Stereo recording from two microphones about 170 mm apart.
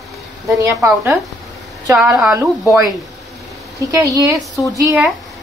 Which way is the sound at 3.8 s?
20° right (ahead or behind).